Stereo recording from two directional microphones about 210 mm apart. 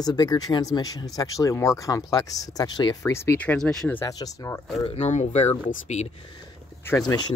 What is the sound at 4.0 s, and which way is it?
Speech, 15° left (ahead or behind).